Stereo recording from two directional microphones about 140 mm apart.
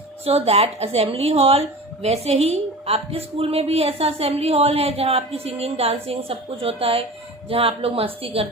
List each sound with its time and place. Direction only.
0.2 s a woman's voice: 45° right (ahead or behind)